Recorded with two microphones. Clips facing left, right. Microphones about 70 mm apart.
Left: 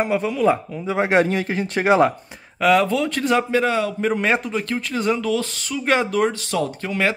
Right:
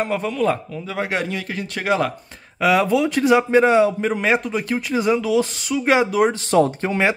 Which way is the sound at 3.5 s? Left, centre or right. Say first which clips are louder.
Right 5 dB; right.